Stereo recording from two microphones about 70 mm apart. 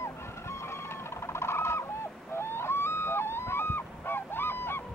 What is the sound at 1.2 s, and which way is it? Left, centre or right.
Owl, left.